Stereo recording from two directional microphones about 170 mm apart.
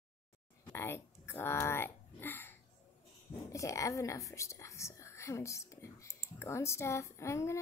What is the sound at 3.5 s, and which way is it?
A child's voice, 20° left (ahead or behind).